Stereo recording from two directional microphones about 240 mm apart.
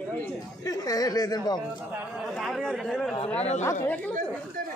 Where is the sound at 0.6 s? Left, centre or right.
Centre.